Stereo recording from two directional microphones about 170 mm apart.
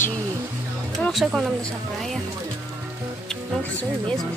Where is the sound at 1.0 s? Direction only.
Centre (ahead or behind).